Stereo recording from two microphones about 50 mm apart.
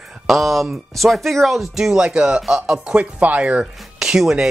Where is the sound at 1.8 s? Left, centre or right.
Centre.